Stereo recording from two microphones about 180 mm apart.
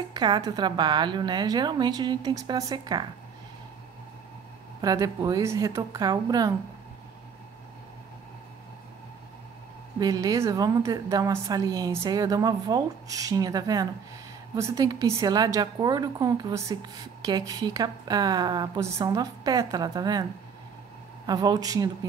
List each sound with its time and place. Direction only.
0.1 s a woman's voice: 20° right (ahead or behind)
4.8 s a woman's voice: 20° right (ahead or behind)
9.9 s a woman's voice: 20° right (ahead or behind)
21.3 s a woman's voice: 20° right (ahead or behind)